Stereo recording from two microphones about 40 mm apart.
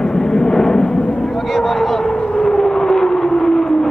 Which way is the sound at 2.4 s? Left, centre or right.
Centre.